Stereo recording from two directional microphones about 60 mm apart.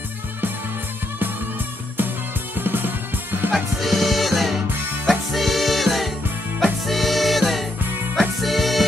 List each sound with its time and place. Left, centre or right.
2.5 s music: right
3.5 s music: centre